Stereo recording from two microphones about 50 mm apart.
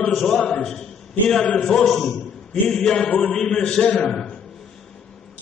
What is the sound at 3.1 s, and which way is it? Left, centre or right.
Speech, left.